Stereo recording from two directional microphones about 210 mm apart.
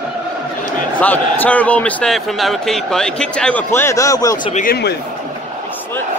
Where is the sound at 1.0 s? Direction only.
5° left (ahead or behind).